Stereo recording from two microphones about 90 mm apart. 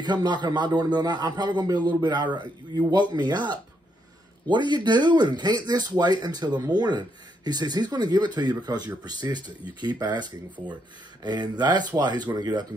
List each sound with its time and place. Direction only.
0.0 s speech: 55° right (ahead or behind)